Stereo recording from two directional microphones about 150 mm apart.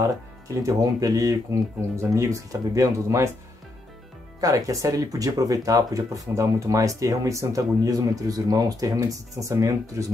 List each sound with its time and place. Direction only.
0.6 s speech: 20° right (ahead or behind)
4.4 s speech: 25° right (ahead or behind)